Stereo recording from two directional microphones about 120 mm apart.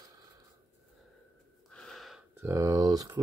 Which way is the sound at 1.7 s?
5° left (ahead or behind).